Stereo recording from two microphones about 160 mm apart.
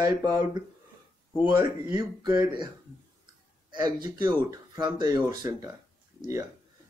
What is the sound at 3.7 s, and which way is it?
Speech, 25° right (ahead or behind).